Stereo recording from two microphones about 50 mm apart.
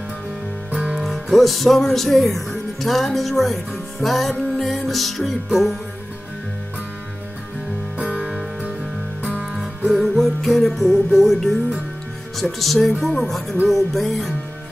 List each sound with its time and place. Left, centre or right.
0.7 s music: right
0.9 s music: centre
8.0 s music: right
9.6 s music: centre
10.0 s music: centre